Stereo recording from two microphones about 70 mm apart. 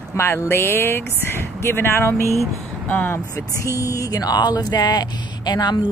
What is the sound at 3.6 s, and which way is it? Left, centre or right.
Speech, left.